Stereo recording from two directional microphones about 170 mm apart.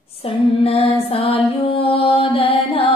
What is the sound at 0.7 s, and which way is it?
Mantra, 35° left (ahead or behind).